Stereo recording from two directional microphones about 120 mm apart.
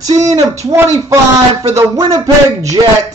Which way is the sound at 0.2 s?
70° right (ahead or behind).